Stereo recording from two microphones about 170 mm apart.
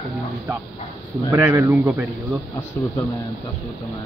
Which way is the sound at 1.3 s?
15° right (ahead or behind).